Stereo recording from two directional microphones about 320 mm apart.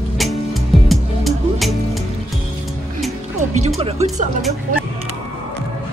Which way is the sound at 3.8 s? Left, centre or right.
Centre.